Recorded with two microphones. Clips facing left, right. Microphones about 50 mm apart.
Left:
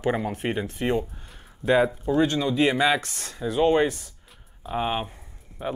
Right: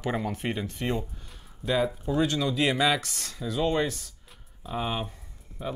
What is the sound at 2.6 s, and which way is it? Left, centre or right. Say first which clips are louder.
Speech: left 3 dB; centre.